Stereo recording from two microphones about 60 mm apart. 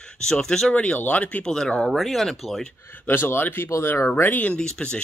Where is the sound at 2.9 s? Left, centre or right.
Left.